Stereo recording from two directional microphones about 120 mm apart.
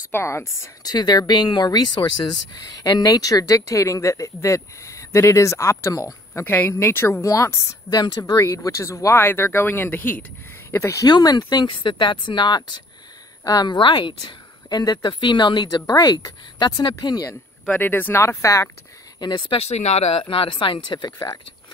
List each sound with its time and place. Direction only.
0.1 s speech: 20° left (ahead or behind)
0.9 s speech: 35° left (ahead or behind)
17.6 s speech: 15° left (ahead or behind)
19.1 s speech: 40° left (ahead or behind)
19.7 s speech: 60° left (ahead or behind); by 21.1 s 40° left (ahead or behind)